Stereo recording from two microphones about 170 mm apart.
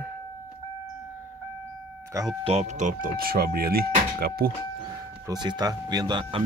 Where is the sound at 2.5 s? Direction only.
40° right (ahead or behind); by 4.5 s 65° right (ahead or behind).